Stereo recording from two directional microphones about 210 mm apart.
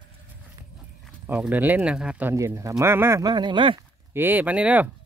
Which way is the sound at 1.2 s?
5° right (ahead or behind).